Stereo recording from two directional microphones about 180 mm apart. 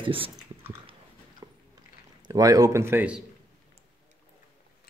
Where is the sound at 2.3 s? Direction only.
20° right (ahead or behind).